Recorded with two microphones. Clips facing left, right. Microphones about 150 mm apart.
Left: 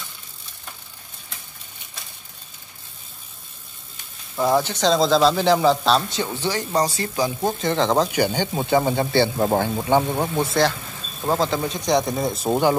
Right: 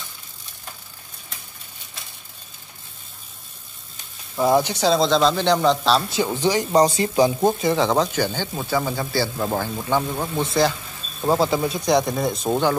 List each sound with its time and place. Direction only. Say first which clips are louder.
4.4 s a man's voice: right 1 dB; 10° right (ahead or behind)
8.1 s speech: left 3 dB; 15° left (ahead or behind)
10.5 s speech: even; centre (ahead or behind)